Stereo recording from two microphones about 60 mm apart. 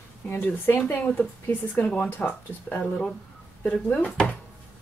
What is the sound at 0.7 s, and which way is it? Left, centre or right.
Speech, left.